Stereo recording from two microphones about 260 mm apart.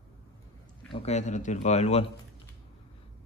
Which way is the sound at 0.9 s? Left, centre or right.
Left.